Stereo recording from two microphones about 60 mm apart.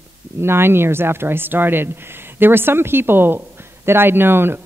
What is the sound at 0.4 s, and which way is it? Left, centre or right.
Speech, right.